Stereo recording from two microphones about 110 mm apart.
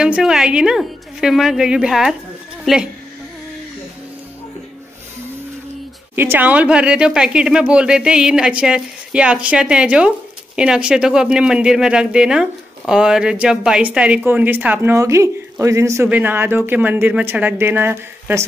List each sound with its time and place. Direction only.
0.0 s a woman's voice: 5° right (ahead or behind)
6.1 s speech: 20° right (ahead or behind)